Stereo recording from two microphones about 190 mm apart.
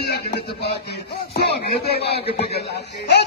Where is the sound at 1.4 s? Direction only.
55° left (ahead or behind).